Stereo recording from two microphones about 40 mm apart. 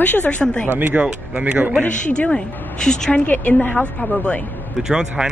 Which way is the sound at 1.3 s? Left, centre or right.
Right.